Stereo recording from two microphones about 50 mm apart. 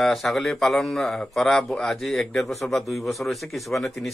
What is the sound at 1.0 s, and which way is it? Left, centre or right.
Speech, centre.